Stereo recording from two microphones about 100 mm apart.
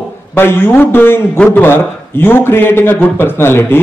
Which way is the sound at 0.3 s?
20° left (ahead or behind).